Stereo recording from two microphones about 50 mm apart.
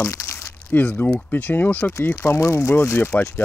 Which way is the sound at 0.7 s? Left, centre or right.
Left.